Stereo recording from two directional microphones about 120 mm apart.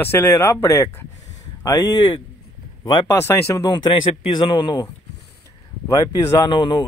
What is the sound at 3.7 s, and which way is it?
Speech, 45° left (ahead or behind).